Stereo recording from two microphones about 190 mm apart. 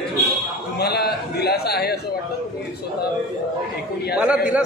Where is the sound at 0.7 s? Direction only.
55° left (ahead or behind).